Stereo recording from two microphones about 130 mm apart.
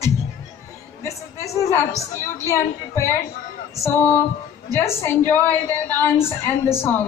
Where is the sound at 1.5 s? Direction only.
25° left (ahead or behind).